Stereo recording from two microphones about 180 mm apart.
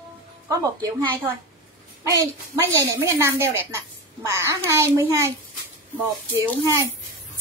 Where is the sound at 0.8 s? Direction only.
25° right (ahead or behind).